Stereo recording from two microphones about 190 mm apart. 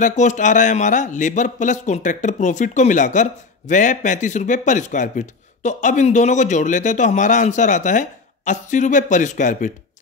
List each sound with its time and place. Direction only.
0.0 s a man's voice: 40° left (ahead or behind)